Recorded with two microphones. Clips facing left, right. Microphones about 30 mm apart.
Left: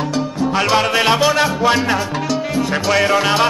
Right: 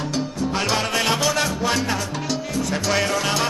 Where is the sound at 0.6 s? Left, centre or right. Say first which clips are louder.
Left 7 dB; centre.